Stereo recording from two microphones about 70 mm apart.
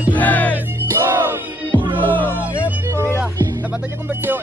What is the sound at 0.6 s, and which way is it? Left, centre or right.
Music, right.